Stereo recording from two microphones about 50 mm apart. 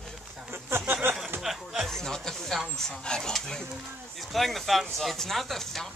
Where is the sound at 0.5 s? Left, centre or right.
Right.